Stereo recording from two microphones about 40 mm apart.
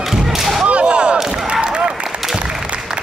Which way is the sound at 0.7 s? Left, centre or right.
Right.